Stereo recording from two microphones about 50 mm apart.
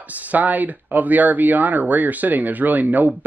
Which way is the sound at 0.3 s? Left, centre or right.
Right.